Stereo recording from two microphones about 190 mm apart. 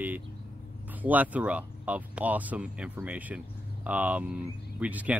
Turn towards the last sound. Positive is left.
turn(degrees=-10)  # may be behind; listen again after turning